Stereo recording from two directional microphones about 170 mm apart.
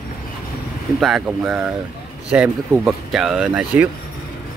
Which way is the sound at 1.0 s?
Centre (ahead or behind).